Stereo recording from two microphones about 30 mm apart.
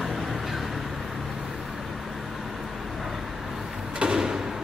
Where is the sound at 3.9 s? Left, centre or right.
Right.